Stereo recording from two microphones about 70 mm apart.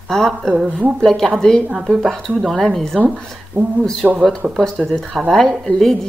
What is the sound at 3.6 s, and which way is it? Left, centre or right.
Speech, right.